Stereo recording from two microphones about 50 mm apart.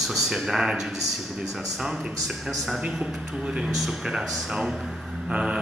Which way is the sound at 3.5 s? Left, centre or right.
Centre.